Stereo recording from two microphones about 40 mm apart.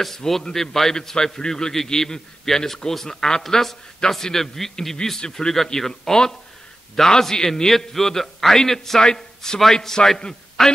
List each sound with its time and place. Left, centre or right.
0.0 s a man's voice: centre